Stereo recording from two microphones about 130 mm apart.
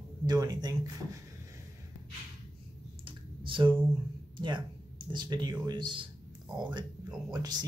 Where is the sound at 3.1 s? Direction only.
40° right (ahead or behind).